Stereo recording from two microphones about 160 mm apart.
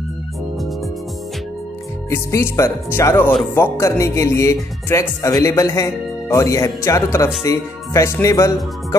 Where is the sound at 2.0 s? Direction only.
15° left (ahead or behind).